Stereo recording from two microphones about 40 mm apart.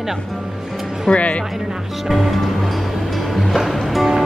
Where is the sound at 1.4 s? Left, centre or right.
Centre.